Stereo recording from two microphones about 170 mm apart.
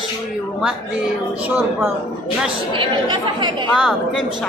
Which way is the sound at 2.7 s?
30° right (ahead or behind).